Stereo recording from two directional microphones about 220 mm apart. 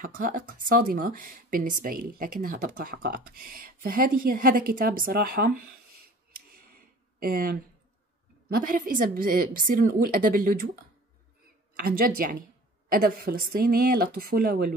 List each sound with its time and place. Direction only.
0.0 s speech: 40° right (ahead or behind)
6.3 s a sound: 40° right (ahead or behind)
8.5 s speech: 40° right (ahead or behind)
11.8 s speech: 40° right (ahead or behind)